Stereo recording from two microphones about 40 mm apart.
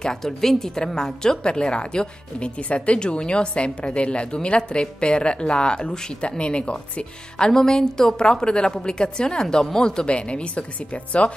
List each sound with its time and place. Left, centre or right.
0.0 s a woman's voice: centre; by 11.3 s left